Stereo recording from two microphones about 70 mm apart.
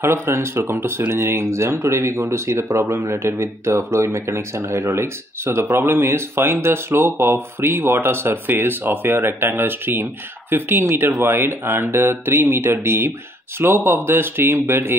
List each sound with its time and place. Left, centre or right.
0.0 s speech: right